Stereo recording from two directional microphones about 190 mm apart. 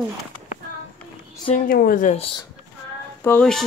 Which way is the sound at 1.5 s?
50° left (ahead or behind).